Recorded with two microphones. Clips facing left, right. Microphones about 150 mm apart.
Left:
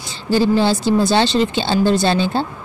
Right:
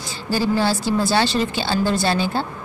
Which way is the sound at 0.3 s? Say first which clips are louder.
Left 5 dB; 20° left (ahead or behind).